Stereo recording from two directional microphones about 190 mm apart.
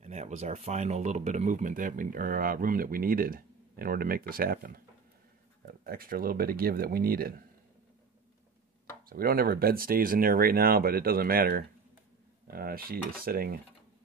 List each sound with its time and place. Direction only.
0.0 s speech: 35° right (ahead or behind); by 7.4 s 50° right (ahead or behind)
9.1 s speech: 50° right (ahead or behind)